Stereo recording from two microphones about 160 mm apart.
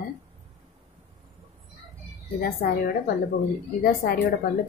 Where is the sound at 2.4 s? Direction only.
65° left (ahead or behind).